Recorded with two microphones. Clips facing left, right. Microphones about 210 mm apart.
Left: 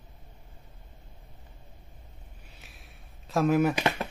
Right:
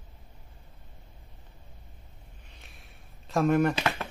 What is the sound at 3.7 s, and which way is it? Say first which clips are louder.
Speech: left 2 dB; 15° left (ahead or behind).